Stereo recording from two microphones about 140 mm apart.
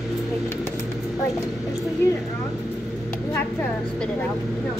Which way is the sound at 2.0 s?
15° left (ahead or behind).